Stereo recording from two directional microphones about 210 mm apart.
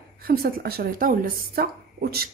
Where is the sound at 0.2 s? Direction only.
45° right (ahead or behind).